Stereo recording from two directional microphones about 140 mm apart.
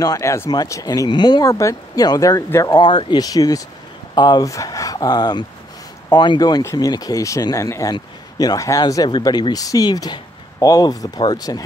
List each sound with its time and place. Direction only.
0.0 s speech: 25° left (ahead or behind)